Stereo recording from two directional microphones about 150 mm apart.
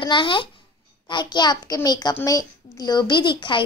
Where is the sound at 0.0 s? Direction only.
30° left (ahead or behind).